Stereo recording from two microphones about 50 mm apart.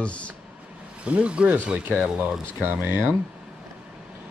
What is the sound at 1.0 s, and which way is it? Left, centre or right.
Speech, right.